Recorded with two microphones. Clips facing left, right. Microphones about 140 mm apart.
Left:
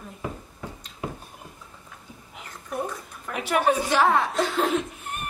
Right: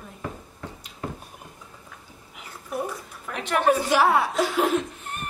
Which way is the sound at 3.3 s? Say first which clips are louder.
Left 1 dB; 5° left (ahead or behind).